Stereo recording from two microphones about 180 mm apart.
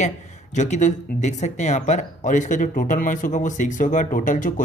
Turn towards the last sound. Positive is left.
turn(degrees=45)  # may be behind; listen again after turning